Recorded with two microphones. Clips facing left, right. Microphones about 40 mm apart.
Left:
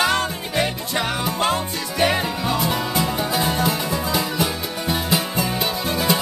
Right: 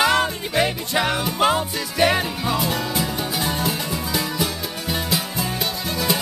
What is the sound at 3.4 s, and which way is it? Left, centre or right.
Music, centre.